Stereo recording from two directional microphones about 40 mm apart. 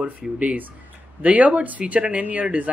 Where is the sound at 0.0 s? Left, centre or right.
Right.